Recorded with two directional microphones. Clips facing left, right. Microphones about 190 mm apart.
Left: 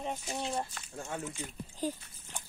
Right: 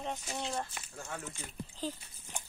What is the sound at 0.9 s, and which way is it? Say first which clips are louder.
A woman's voice: left 5 dB; 25° left (ahead or behind).